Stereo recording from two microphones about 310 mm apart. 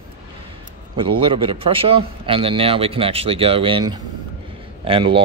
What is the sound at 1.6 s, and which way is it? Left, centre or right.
Speech, centre.